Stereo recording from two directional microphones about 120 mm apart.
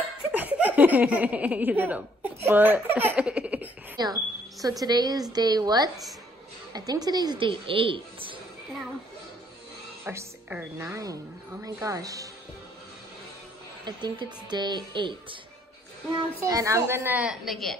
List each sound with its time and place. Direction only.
0.3 s speech: 15° right (ahead or behind)
3.2 s laughter: 10° right (ahead or behind)
3.9 s a woman's voice: 35° right (ahead or behind)
10.0 s a woman's voice: 20° right (ahead or behind)
13.8 s speech: 35° right (ahead or behind)
16.4 s a woman's voice: 30° right (ahead or behind); by 17.4 s 10° right (ahead or behind)
17.5 s a woman's voice: centre (ahead or behind)